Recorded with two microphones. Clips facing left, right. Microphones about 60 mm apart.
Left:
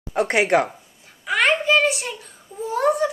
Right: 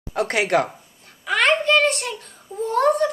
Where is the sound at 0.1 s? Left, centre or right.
Left.